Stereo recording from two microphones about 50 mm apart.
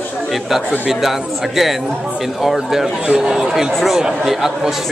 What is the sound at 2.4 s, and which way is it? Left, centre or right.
A man's voice, centre.